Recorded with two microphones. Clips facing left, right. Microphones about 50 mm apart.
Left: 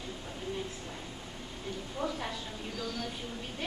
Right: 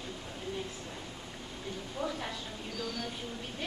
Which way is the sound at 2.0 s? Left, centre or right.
Centre.